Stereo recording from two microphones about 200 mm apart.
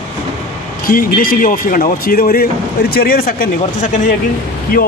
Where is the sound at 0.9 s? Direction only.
45° left (ahead or behind).